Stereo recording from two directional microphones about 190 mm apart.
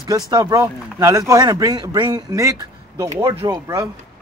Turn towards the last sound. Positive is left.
turn(degrees=-20)  # may be behind; listen again after turning